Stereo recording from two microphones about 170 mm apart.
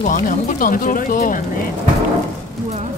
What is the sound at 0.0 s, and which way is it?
Speech, 50° left (ahead or behind).